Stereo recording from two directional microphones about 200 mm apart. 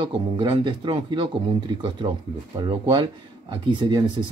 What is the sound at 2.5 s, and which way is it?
Speech, 20° right (ahead or behind).